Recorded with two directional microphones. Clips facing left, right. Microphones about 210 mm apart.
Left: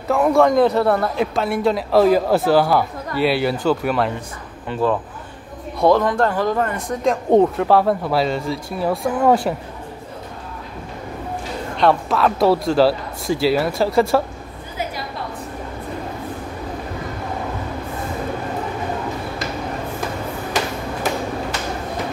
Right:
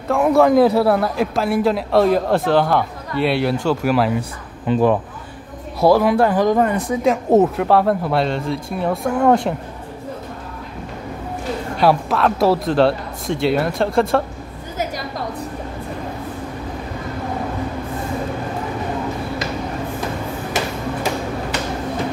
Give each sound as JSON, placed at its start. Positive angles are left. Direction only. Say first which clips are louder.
{"t": 0.1, "sound": "a man's voice", "louder": "right 1 dB", "side_deg": 0}
{"t": 4.6, "sound": "speech", "louder": "right 4 dB", "side_deg": -20}
{"t": 5.8, "sound": "a man's voice", "louder": "right 2 dB", "side_deg": -5}
{"t": 11.7, "sound": "a man's voice", "louder": "even", "side_deg": -5}